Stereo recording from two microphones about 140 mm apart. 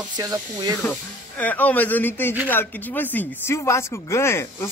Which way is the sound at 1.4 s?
10° left (ahead or behind).